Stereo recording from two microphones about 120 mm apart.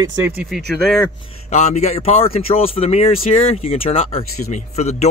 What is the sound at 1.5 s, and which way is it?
Speech, 70° left (ahead or behind).